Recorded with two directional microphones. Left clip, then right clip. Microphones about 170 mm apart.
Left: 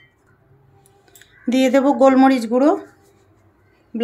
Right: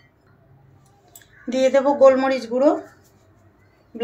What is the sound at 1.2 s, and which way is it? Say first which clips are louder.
Speech: left 1 dB; 70° left (ahead or behind).